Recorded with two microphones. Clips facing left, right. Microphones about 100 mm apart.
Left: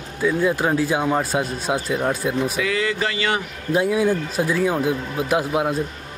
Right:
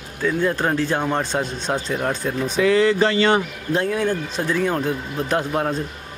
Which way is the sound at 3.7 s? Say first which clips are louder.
Left 2 dB; 10° left (ahead or behind).